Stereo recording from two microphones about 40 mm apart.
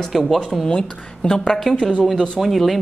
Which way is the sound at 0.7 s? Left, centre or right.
Centre.